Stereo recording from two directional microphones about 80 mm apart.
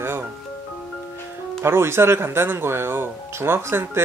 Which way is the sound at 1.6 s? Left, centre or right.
Right.